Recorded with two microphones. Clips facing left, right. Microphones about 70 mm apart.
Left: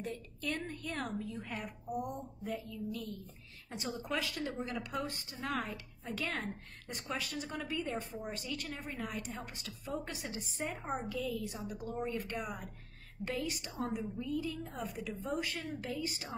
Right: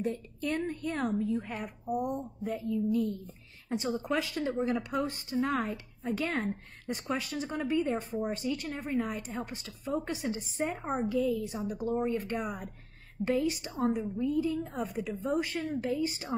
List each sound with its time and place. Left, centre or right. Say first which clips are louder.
0.0 s a woman's voice: right 7 dB; right